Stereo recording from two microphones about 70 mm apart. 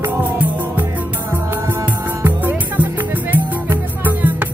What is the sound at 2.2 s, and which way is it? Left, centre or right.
Music, right.